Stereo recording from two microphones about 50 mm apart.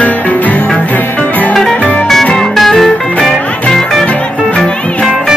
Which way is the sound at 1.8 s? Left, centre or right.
Left.